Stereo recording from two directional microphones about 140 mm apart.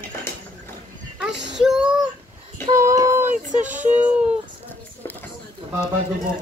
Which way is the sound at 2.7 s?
20° right (ahead or behind).